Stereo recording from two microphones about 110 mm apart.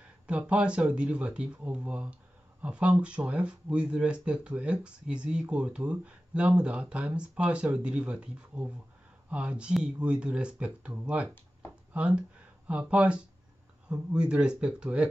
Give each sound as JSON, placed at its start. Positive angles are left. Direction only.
{"t": 0.3, "sound": "speech", "side_deg": -10}